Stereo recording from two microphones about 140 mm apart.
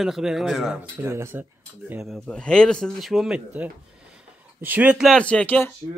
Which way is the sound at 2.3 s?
5° left (ahead or behind).